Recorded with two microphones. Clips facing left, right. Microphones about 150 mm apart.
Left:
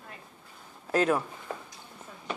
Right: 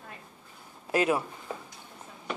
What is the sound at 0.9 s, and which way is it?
Speech, 10° right (ahead or behind).